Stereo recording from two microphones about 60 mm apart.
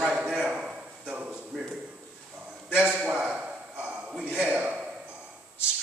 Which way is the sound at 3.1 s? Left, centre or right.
Centre.